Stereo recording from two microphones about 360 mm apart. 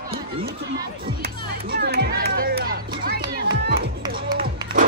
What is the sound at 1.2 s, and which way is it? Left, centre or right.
Speech, right.